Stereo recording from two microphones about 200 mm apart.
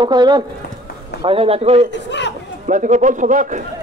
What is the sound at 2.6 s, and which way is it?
A man's voice, 40° right (ahead or behind).